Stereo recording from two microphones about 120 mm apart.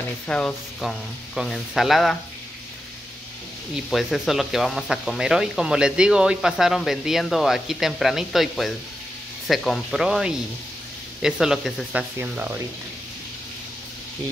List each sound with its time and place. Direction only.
0.3 s speech: 10° left (ahead or behind)
3.9 s speech: centre (ahead or behind)
12.2 s speech: 20° right (ahead or behind)